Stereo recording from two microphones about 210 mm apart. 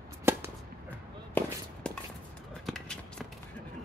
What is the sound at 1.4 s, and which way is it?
Walk, 10° left (ahead or behind).